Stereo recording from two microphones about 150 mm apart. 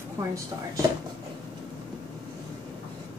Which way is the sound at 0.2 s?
25° right (ahead or behind).